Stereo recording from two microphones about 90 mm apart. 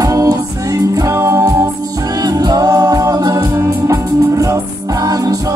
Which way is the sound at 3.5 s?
30° right (ahead or behind).